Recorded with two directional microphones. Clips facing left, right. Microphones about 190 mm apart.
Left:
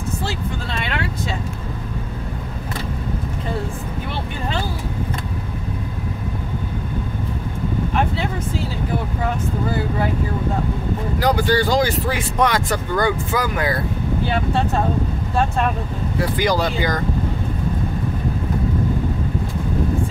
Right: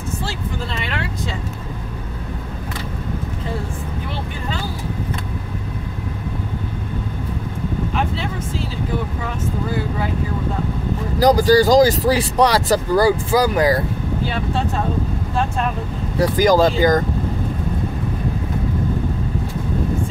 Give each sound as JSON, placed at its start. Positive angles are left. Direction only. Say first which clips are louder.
{"t": 11.1, "sound": "speech", "louder": "right 6 dB", "side_deg": -35}
{"t": 16.2, "sound": "speech", "louder": "right 6 dB", "side_deg": -45}